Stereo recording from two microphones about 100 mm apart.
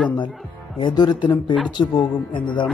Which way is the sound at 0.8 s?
45° left (ahead or behind).